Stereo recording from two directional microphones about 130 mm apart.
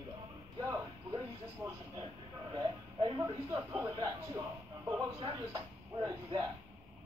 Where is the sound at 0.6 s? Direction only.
30° right (ahead or behind).